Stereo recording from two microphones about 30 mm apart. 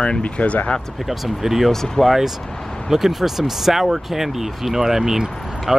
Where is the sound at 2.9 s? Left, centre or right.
Centre.